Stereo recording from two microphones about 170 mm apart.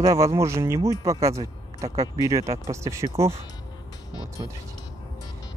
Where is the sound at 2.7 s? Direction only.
15° right (ahead or behind).